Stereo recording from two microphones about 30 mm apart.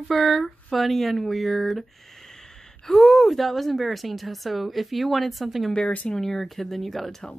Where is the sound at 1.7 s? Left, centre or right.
Centre.